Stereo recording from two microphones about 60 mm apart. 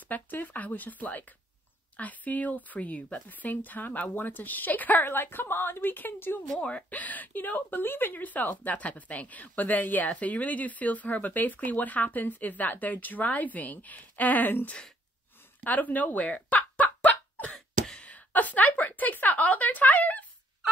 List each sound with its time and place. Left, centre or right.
0.1 s a woman's voice: left
6.5 s a woman's voice: centre
15.6 s a sound: left
17.5 s cough: centre
18.0 s a woman's voice: left